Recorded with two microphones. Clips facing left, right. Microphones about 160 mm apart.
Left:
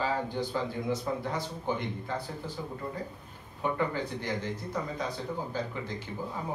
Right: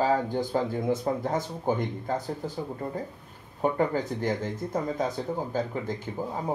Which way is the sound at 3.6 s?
45° right (ahead or behind).